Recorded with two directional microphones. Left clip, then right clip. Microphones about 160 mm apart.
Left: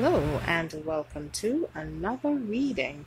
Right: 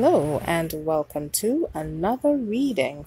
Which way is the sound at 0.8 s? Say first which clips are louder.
Right 7 dB; 40° right (ahead or behind).